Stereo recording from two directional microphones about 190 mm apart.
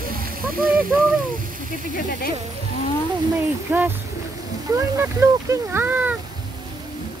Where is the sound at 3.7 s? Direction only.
10° right (ahead or behind).